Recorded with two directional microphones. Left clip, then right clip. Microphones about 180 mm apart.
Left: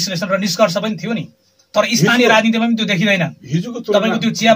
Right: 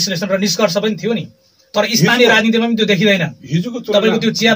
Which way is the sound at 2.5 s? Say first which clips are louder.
Right 3 dB; 15° right (ahead or behind).